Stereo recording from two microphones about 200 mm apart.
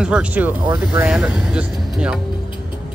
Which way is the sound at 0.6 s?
20° right (ahead or behind).